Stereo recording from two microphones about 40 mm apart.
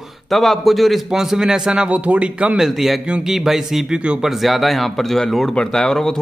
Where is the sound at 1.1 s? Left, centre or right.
Centre.